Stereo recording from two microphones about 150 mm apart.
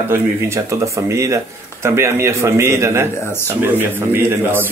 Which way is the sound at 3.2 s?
15° left (ahead or behind).